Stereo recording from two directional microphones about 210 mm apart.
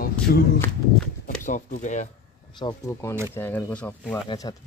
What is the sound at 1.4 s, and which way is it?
Speech, 35° left (ahead or behind).